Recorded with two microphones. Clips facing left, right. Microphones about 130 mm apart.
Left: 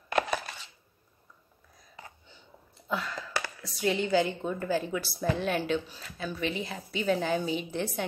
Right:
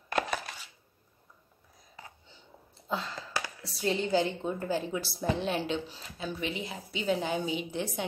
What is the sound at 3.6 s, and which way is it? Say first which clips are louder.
A woman's voice: left 2 dB; 30° right (ahead or behind).